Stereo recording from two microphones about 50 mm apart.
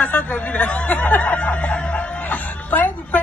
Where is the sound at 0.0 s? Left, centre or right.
Left.